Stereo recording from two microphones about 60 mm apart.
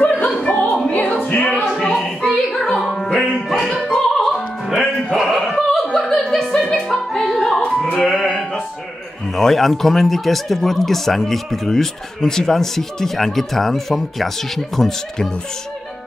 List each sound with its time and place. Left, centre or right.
0.0 s music: centre
1.1 s music: centre
5.3 s a sound: centre
5.6 s music: centre
9.4 s speech: centre